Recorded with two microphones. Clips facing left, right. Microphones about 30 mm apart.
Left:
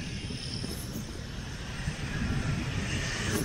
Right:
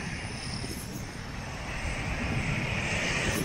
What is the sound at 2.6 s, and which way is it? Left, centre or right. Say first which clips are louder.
Vehicle: right 4 dB; right.